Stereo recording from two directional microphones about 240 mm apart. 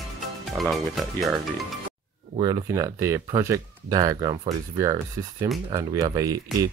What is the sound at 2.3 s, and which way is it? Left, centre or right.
Speech, centre.